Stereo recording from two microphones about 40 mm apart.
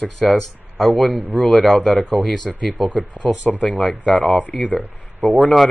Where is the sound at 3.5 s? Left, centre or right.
Left.